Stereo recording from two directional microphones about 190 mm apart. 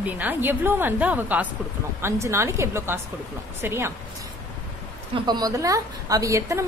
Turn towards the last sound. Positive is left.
turn(degrees=-15)  # may be behind; listen again after turning